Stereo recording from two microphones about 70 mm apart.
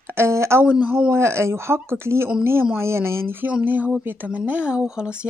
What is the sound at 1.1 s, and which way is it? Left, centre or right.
A woman's voice, right.